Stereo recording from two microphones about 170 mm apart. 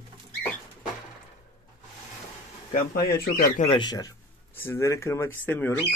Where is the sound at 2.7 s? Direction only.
65° left (ahead or behind).